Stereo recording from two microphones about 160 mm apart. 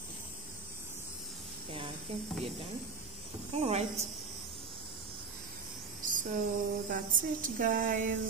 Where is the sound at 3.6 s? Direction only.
40° right (ahead or behind).